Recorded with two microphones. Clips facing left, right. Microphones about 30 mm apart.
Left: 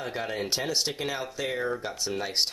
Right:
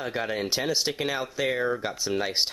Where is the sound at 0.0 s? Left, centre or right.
Centre.